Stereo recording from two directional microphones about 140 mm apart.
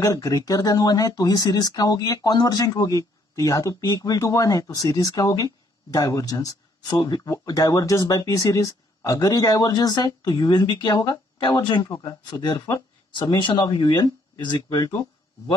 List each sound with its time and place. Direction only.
0.0 s speech: 25° left (ahead or behind)